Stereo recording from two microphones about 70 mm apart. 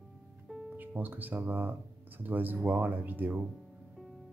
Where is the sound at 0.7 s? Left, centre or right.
Right.